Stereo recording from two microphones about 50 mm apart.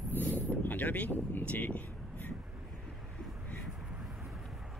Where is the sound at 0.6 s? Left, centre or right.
Left.